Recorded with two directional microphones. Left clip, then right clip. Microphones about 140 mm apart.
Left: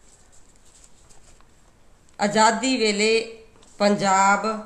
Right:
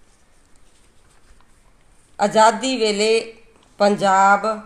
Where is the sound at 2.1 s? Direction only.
35° right (ahead or behind).